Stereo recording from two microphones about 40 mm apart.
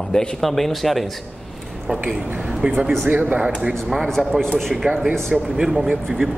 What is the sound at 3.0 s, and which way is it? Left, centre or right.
Speech, right.